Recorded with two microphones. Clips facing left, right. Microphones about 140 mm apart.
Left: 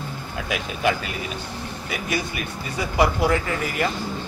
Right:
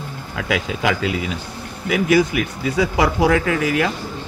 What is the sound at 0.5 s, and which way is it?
Speech, 90° right.